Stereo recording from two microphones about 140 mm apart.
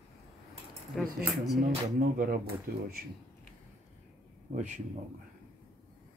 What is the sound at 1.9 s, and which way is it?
Speech, 90° right.